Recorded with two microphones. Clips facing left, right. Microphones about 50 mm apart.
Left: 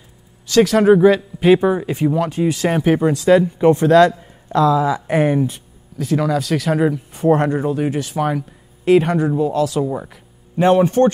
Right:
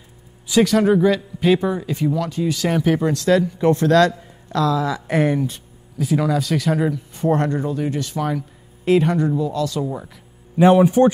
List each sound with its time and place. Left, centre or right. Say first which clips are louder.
0.7 s a man's voice: left 4 dB; centre
5.9 s speech: left 1 dB; centre
7.6 s a man's voice: left 4 dB; left
7.9 s speech: left 3 dB; centre
8.8 s speech: left 3 dB; centre
10.6 s a man's voice: even; centre